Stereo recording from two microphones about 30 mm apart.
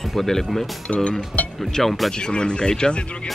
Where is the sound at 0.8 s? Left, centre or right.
Left.